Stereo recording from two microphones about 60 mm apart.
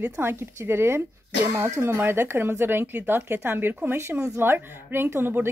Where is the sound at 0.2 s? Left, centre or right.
Right.